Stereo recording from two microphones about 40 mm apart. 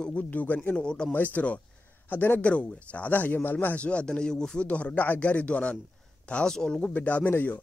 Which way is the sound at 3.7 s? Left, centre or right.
Left.